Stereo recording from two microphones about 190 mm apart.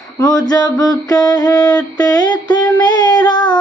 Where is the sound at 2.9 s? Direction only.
20° left (ahead or behind).